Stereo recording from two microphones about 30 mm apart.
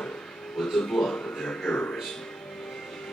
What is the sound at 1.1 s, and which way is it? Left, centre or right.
Speech, left.